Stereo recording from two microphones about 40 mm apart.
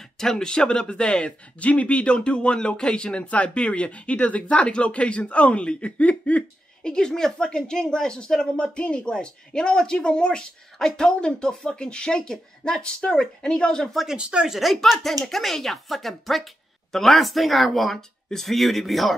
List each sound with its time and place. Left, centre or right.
0.2 s speech: centre; by 6.9 s left
6.9 s speech: centre
14.0 s speech: right
14.5 s speech: centre